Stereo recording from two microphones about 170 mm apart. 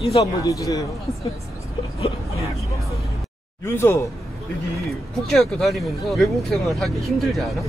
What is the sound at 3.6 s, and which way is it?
Speech, 15° left (ahead or behind).